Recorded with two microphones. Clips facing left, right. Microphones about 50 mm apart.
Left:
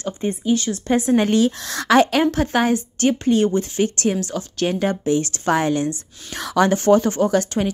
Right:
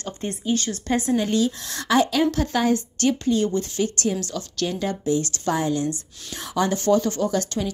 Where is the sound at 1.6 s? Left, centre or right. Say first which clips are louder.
Left 5 dB; left.